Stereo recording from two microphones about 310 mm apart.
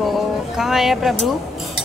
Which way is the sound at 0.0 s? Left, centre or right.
Centre.